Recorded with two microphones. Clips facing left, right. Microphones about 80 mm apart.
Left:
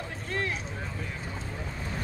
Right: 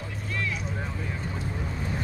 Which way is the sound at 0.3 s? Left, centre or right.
Left.